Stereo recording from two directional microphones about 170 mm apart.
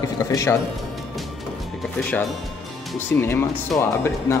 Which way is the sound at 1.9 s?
5° left (ahead or behind).